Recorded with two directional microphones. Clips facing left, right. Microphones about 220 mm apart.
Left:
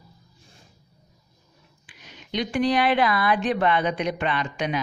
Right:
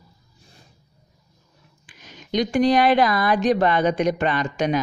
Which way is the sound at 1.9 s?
45° right (ahead or behind).